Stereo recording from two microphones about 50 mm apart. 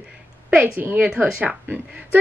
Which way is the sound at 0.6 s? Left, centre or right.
Right.